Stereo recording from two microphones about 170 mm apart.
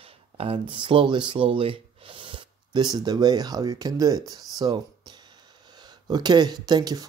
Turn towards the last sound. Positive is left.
turn(degrees=-25)  # may be behind; listen again after turning